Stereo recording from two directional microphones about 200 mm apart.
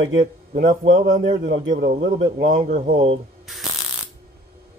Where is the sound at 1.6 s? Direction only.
60° right (ahead or behind).